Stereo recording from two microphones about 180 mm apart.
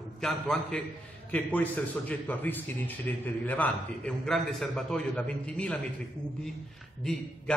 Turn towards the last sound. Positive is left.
turn(degrees=0)  # may be behind; listen again after turning